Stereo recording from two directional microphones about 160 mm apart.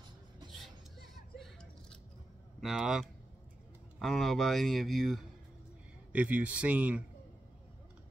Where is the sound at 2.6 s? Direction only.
Centre (ahead or behind).